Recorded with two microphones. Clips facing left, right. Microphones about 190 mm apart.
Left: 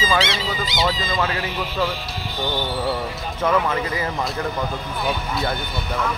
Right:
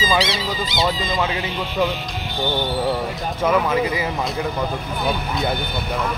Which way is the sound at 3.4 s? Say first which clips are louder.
Right 2 dB; 10° right (ahead or behind).